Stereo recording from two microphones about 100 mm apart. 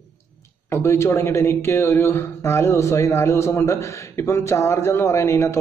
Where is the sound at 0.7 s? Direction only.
30° left (ahead or behind).